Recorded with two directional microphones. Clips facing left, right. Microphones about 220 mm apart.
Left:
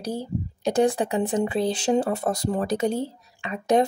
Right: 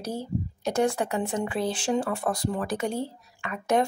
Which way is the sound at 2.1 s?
25° left (ahead or behind).